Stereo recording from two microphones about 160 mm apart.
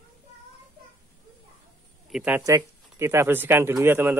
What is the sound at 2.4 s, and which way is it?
Speech, 20° right (ahead or behind).